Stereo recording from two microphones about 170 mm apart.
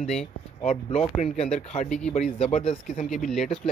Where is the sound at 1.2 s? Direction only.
40° left (ahead or behind).